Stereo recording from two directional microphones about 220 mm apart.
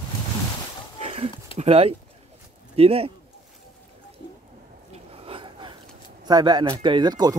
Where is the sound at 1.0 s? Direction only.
25° right (ahead or behind).